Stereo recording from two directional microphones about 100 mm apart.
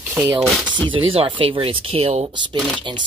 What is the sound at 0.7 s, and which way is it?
Speech, 55° right (ahead or behind).